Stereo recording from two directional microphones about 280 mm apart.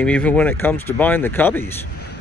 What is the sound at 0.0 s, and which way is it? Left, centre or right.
Speech, centre.